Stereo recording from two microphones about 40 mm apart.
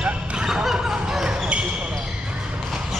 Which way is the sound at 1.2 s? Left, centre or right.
Right.